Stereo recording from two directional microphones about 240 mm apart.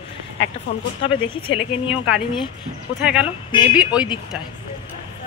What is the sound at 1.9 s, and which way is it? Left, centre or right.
Speech, centre.